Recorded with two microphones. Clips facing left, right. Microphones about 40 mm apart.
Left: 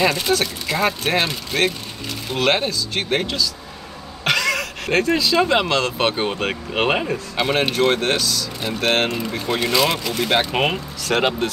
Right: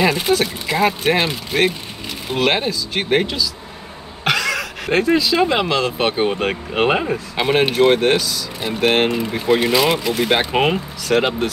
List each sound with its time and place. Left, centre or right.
0.0 s speech: centre
7.1 s speech: centre